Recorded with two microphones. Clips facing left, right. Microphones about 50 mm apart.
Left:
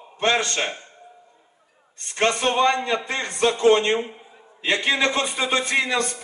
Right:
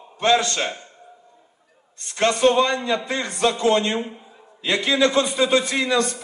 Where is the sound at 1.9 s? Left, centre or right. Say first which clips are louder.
Right 1 dB; left.